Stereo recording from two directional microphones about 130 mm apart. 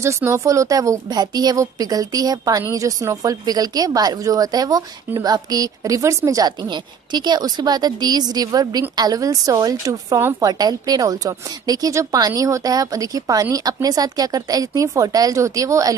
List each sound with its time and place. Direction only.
0.0 s a woman's voice: 20° right (ahead or behind)